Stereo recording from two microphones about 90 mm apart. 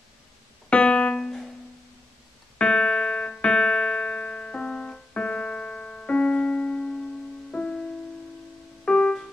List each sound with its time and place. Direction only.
0.7 s music: 10° left (ahead or behind)
2.6 s music: 10° left (ahead or behind)